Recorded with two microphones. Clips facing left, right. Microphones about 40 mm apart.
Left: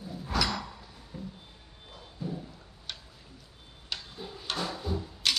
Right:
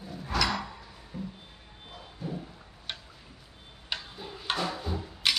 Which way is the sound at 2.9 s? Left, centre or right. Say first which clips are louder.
Right 3 dB; right.